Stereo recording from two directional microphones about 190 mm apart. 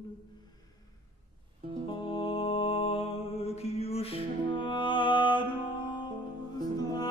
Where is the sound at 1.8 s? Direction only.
30° left (ahead or behind).